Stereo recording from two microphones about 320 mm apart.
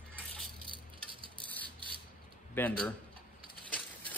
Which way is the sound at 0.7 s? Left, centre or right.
Centre.